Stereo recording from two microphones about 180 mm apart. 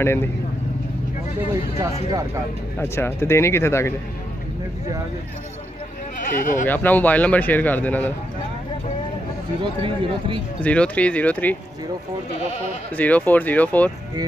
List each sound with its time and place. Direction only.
0.0 s speech: 15° left (ahead or behind)
2.0 s speech: 20° right (ahead or behind)
2.8 s speech: 10° left (ahead or behind)
6.3 s speech: 45° left (ahead or behind)
6.6 s speech: 10° left (ahead or behind)
9.6 s speech: 30° right (ahead or behind)
10.6 s speech: 5° left (ahead or behind)
12.9 s speech: 10° left (ahead or behind)